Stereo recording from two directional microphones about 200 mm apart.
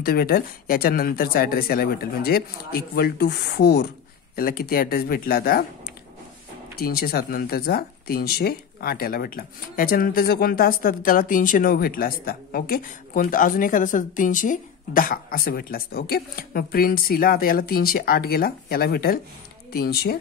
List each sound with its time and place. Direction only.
0.0 s speech: 50° left (ahead or behind)
6.8 s speech: 50° left (ahead or behind)